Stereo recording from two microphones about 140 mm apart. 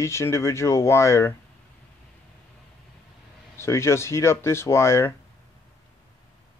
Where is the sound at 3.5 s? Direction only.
20° left (ahead or behind).